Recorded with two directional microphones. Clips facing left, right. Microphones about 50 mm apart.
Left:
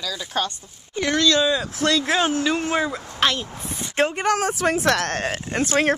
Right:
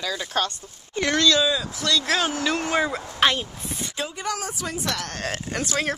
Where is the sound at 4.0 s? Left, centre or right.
Left.